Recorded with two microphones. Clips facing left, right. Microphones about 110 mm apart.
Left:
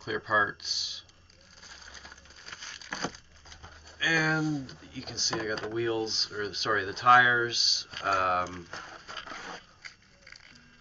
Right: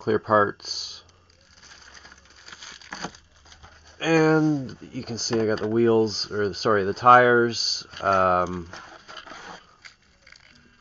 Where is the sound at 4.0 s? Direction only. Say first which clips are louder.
Right 10 dB; 40° right (ahead or behind).